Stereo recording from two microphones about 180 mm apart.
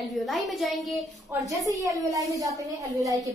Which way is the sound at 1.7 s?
20° right (ahead or behind).